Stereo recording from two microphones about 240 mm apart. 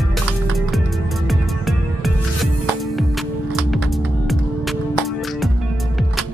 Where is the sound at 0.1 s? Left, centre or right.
Centre.